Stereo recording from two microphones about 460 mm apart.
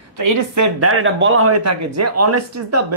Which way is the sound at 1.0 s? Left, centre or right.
Right.